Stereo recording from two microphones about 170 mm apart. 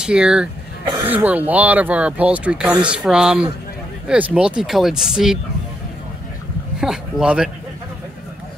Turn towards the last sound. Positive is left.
turn(degrees=-5)  # may be behind; listen again after turning